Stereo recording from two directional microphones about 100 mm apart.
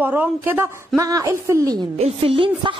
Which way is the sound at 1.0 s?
35° right (ahead or behind).